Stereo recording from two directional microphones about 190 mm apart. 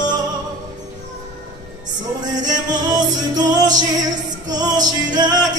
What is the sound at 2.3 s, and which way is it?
Music, 20° right (ahead or behind).